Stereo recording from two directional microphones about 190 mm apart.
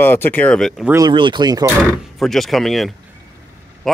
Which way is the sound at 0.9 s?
25° right (ahead or behind).